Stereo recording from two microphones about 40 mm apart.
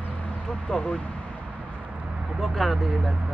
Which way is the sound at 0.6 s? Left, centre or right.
Left.